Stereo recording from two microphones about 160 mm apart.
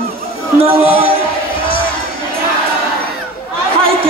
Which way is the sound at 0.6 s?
35° right (ahead or behind).